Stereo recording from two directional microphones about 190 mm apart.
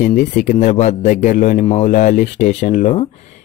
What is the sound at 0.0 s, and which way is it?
A man's voice, 40° left (ahead or behind).